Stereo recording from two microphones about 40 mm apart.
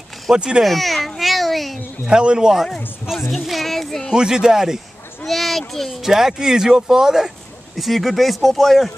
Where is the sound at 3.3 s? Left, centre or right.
Centre.